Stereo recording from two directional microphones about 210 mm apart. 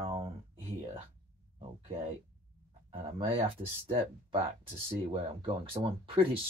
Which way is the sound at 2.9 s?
25° right (ahead or behind).